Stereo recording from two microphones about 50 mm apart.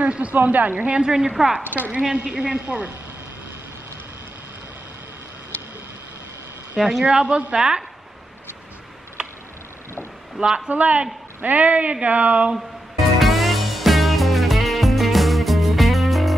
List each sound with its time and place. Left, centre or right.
0.0 s speech: right
0.9 s speech: centre
1.6 s speech: right
2.0 s speech: right
6.8 s speech: centre
9.2 s tick: centre
10.4 s speech: centre
10.7 s speech: right
13.2 s music: centre